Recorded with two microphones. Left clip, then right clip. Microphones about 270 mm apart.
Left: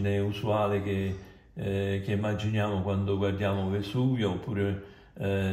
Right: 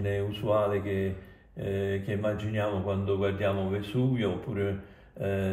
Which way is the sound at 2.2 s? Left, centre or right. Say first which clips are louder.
Right 3 dB; centre.